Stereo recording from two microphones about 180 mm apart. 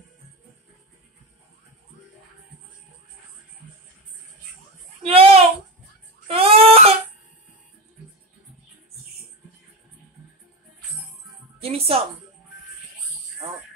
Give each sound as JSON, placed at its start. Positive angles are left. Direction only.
{"t": 5.0, "sound": "a sound", "side_deg": -30}
{"t": 6.2, "sound": "cough", "side_deg": -30}
{"t": 11.6, "sound": "music", "side_deg": -35}